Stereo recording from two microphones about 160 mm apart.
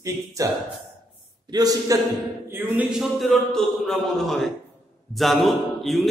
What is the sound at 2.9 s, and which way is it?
A man's voice, centre (ahead or behind).